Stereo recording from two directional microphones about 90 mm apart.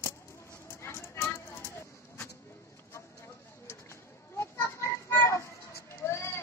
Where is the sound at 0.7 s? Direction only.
30° left (ahead or behind).